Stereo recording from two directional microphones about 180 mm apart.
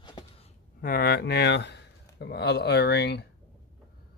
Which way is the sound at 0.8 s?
55° left (ahead or behind).